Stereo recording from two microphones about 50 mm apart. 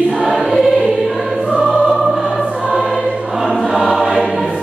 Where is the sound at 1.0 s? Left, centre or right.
Centre.